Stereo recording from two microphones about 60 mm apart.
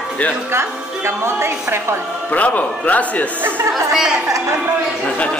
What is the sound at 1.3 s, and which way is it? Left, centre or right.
Speech, right.